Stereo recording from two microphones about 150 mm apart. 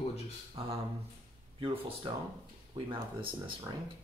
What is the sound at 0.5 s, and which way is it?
Speech, 40° right (ahead or behind).